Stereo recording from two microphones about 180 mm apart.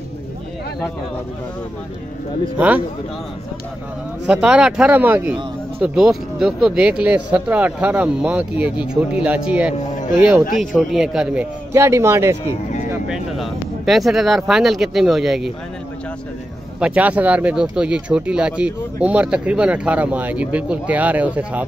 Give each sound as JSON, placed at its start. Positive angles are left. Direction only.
{"t": 2.5, "sound": "speech", "side_deg": -10}
{"t": 4.3, "sound": "speech", "side_deg": -5}
{"t": 11.7, "sound": "speech", "side_deg": -15}
{"t": 12.9, "sound": "speech", "side_deg": 0}
{"t": 16.8, "sound": "speech", "side_deg": -10}